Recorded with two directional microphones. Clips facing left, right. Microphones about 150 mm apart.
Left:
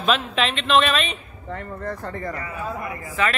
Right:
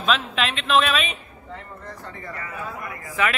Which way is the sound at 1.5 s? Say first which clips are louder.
Left 8 dB; 55° left (ahead or behind).